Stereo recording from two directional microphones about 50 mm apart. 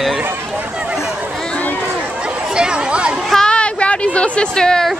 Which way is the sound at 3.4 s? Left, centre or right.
Left.